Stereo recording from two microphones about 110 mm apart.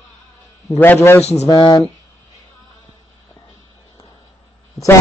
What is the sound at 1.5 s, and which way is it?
Speech, 35° left (ahead or behind).